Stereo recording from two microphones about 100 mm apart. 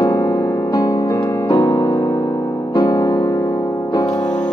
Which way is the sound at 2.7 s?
45° left (ahead or behind).